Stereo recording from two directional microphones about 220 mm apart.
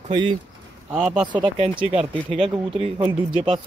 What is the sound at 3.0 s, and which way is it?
Speech, 10° right (ahead or behind).